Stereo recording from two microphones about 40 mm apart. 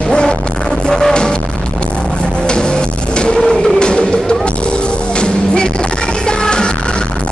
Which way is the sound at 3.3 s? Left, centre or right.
Centre.